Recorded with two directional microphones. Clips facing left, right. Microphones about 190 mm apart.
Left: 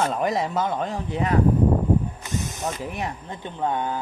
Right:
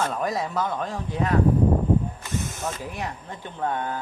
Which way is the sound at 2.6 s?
20° left (ahead or behind).